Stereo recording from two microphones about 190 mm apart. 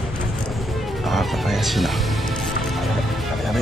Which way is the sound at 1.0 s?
Centre (ahead or behind).